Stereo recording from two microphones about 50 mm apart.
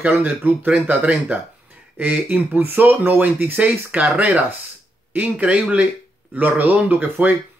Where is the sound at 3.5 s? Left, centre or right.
Right.